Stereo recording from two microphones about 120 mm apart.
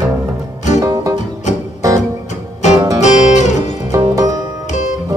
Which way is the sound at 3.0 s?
75° left (ahead or behind).